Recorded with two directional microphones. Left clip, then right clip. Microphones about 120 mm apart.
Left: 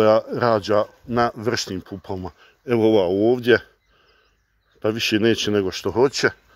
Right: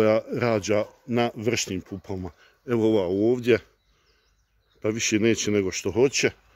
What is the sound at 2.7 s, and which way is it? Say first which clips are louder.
Speech: left 5 dB; 10° left (ahead or behind).